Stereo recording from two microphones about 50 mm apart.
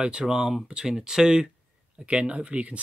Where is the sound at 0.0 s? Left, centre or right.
Centre.